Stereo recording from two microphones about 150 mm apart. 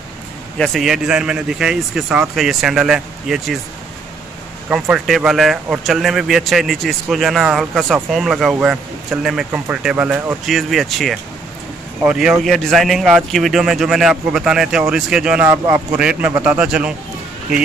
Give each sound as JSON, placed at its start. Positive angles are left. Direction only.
{"t": 0.6, "sound": "speech", "side_deg": 0}
{"t": 4.6, "sound": "a man's voice", "side_deg": -5}